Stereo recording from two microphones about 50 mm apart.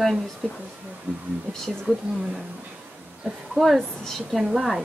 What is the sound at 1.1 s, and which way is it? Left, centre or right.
Speech, right.